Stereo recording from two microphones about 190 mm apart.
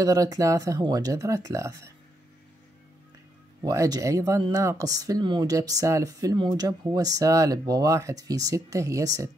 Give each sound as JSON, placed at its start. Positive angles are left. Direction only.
{"t": 0.0, "sound": "speech", "side_deg": -20}
{"t": 3.6, "sound": "speech", "side_deg": -15}